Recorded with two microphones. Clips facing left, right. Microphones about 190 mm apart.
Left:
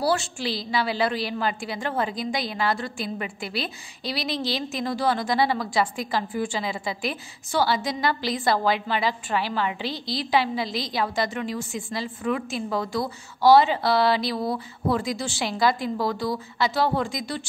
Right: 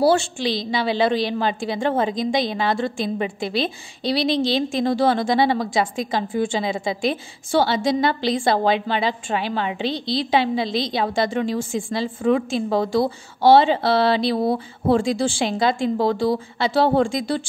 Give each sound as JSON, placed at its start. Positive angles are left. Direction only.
{"t": 0.0, "sound": "a woman's voice", "side_deg": -25}